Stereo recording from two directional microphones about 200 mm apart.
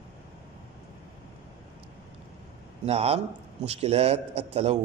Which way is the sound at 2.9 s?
30° right (ahead or behind).